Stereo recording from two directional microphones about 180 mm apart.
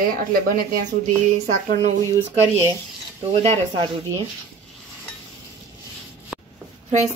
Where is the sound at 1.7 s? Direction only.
40° right (ahead or behind).